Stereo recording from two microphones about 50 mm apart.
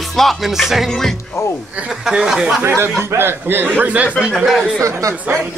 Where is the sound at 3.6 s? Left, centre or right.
Right.